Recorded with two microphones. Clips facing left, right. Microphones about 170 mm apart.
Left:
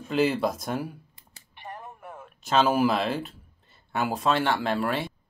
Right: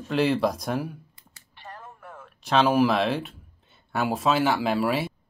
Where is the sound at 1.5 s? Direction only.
20° left (ahead or behind).